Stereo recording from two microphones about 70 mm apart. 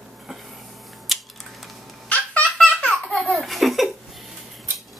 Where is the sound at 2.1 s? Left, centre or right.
Centre.